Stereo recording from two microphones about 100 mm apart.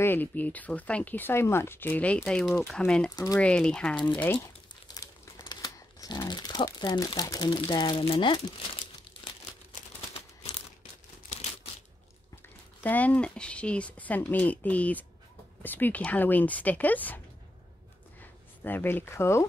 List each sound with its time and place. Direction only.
0.0 s speech: 20° left (ahead or behind)
2.2 s speech: 5° left (ahead or behind)
4.4 s crumpling: 40° left (ahead or behind)
5.9 s speech: 45° left (ahead or behind)
12.8 s speech: 15° left (ahead or behind)
18.6 s speech: 20° left (ahead or behind)